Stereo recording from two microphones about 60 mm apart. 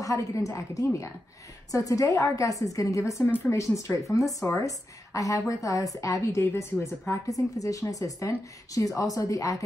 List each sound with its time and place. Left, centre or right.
0.0 s a woman's voice: left
1.7 s a woman's voice: left
6.5 s a woman's voice: left